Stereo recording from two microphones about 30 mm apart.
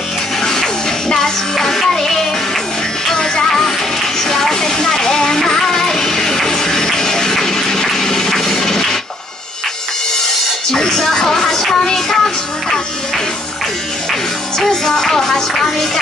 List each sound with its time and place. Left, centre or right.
0.4 s music: centre
3.1 s music: centre
4.3 s a sound: centre
5.4 s music: centre
10.2 s music: centre
14.7 s music: centre